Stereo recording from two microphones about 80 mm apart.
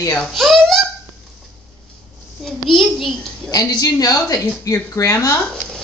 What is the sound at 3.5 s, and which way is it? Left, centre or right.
Speech, left.